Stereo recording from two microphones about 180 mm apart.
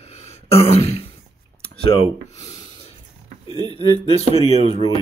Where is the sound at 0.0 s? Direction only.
35° left (ahead or behind).